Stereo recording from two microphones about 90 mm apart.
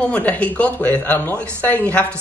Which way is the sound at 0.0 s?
15° left (ahead or behind).